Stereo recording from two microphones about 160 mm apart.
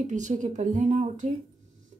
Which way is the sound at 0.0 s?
50° right (ahead or behind).